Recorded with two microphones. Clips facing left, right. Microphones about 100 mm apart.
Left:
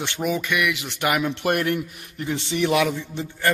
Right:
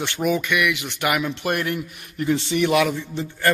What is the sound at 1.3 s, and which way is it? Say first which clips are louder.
Speech: left 2 dB; 55° left (ahead or behind).